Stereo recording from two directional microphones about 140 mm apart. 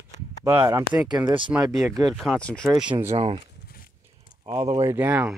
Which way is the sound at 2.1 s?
Centre (ahead or behind).